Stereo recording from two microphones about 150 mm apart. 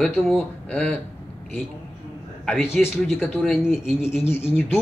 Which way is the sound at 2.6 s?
15° left (ahead or behind).